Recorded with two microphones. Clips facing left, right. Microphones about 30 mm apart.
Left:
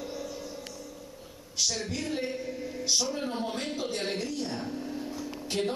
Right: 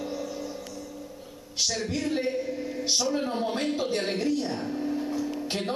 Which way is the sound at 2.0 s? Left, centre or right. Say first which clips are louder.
Right 5 dB; centre.